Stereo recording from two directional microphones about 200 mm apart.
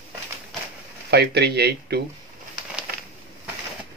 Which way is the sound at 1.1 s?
55° right (ahead or behind).